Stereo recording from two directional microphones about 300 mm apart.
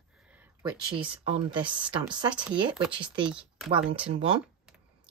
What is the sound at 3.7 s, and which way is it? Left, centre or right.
Speech, centre.